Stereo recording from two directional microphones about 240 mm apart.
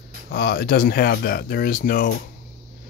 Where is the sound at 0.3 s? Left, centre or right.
Left.